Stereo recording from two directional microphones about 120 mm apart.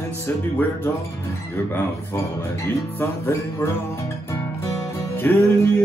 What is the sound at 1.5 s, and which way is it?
Speech, 20° left (ahead or behind).